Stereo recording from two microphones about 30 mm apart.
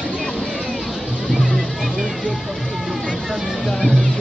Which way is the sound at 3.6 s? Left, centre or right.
Centre.